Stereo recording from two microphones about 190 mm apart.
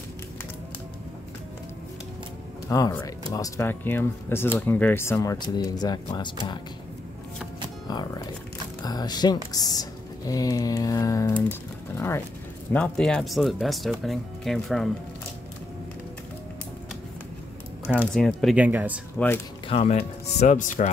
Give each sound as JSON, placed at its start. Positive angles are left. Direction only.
{"t": 2.7, "sound": "speech", "side_deg": 20}
{"t": 8.8, "sound": "speech", "side_deg": 20}
{"t": 12.7, "sound": "speech", "side_deg": 5}
{"t": 17.9, "sound": "speech", "side_deg": 5}
{"t": 19.1, "sound": "speech", "side_deg": 10}
{"t": 19.7, "sound": "speech", "side_deg": 35}